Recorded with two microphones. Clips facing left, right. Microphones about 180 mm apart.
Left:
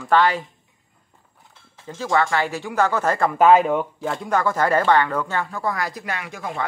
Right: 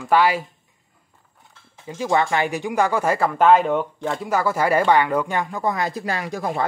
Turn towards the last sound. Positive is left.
turn(degrees=-35)  # may be behind; listen again after turning